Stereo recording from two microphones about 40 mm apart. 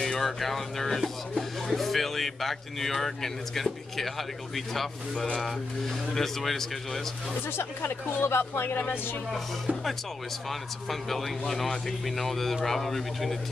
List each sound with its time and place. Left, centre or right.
0.2 s speech: centre
6.1 s a man's voice: centre
7.5 s speech: left
10.5 s speech: centre